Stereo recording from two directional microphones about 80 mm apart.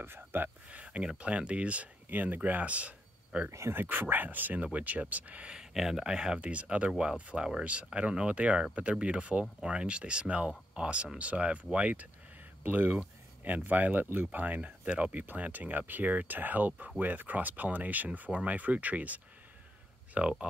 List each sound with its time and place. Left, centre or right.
0.0 s speech: right
3.4 s speech: right; by 20.4 s centre